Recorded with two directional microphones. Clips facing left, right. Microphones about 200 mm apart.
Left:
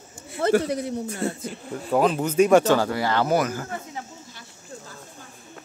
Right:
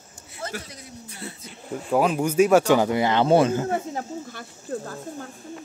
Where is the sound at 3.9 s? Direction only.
50° right (ahead or behind).